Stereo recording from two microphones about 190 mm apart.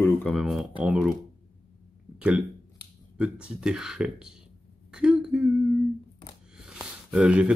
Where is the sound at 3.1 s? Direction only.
5° right (ahead or behind).